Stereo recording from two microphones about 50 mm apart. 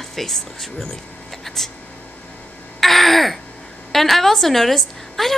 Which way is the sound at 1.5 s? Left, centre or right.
Centre.